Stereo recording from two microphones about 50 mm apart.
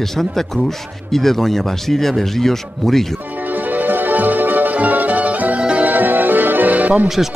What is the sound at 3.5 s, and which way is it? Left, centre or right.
Music, right.